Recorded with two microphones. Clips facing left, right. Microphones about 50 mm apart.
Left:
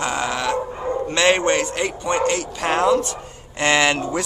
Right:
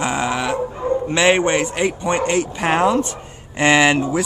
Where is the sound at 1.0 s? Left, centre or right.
Centre.